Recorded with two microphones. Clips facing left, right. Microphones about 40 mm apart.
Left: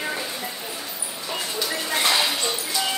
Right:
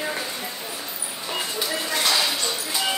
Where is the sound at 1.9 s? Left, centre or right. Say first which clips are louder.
Left 2 dB; left.